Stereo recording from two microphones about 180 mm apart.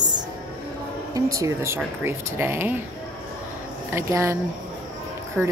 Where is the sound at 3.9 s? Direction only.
15° right (ahead or behind).